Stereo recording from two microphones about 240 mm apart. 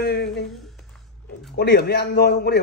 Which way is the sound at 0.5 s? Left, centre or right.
Centre.